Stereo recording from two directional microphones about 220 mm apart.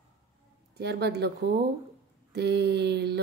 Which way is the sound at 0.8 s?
50° right (ahead or behind).